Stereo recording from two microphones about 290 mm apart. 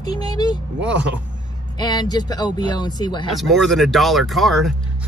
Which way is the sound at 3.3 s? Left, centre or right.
Centre.